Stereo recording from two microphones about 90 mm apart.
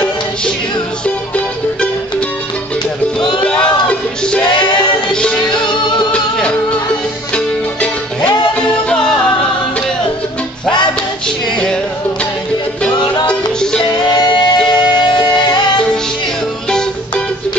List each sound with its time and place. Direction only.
1.0 s music: 15° left (ahead or behind)
3.4 s a sound: 10° left (ahead or behind)
5.1 s music: 10° left (ahead or behind)
5.8 s music: 60° left (ahead or behind)
6.1 s music: 10° left (ahead or behind)
8.3 s music: 10° left (ahead or behind)
11.2 s music: 5° left (ahead or behind)
13.3 s music: 10° left (ahead or behind)
14.2 s music: 55° left (ahead or behind)